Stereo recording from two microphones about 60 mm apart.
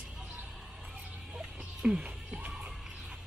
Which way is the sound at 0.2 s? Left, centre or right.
Right.